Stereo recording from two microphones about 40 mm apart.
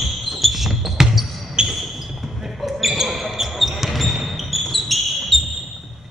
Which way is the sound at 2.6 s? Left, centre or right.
Centre.